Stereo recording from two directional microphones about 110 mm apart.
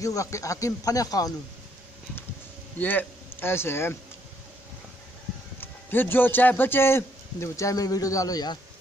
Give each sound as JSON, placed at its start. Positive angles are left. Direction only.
{"t": 0.0, "sound": "a man's voice", "side_deg": 30}
{"t": 2.8, "sound": "speech", "side_deg": 15}
{"t": 5.6, "sound": "a man's voice", "side_deg": 20}